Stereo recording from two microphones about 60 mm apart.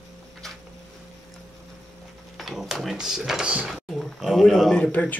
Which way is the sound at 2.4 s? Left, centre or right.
Centre.